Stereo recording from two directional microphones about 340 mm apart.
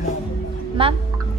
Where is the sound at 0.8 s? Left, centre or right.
Centre.